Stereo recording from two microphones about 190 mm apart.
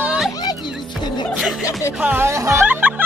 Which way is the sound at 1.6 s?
15° left (ahead or behind).